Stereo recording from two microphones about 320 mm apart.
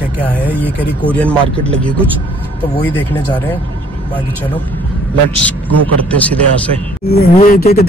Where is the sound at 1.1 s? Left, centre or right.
Centre.